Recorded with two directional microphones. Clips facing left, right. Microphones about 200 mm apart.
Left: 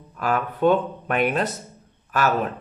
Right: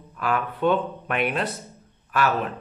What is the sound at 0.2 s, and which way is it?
A man's voice, 45° left (ahead or behind).